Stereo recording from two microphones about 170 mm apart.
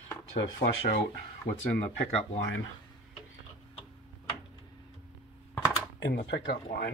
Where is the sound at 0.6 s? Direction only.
65° left (ahead or behind).